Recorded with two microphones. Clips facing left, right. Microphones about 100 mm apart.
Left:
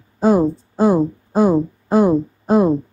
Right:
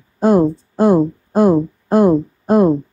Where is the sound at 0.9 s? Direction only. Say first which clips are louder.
Right 3 dB; 5° right (ahead or behind).